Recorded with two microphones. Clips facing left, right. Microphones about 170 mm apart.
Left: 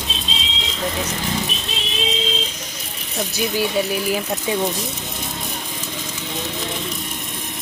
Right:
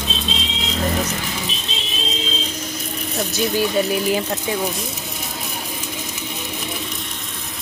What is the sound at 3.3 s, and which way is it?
Speech, 5° left (ahead or behind).